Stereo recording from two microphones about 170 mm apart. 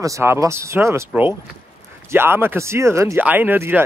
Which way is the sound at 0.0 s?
15° right (ahead or behind).